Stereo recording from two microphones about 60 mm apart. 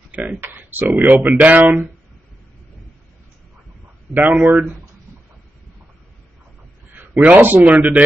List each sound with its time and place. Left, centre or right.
0.4 s speech: right
4.2 s speech: right
6.9 s a man's voice: right